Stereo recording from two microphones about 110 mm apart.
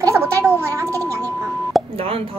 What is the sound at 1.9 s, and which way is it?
Speech, 60° right (ahead or behind).